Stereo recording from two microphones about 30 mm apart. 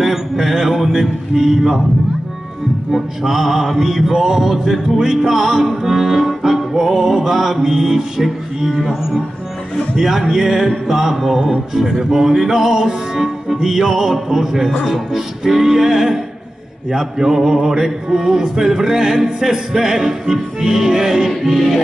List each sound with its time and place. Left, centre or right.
0.0 s a sound: centre
0.6 s speech: centre
2.9 s speech: centre
9.9 s speech: centre
10.9 s music: centre
12.0 s speech: centre
21.3 s music: centre